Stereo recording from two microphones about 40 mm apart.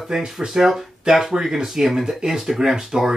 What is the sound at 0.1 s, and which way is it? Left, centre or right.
Speech, centre.